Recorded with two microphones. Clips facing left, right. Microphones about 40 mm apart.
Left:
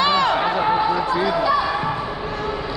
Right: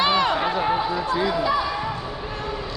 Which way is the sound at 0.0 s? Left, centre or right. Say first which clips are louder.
Left 2 dB; left.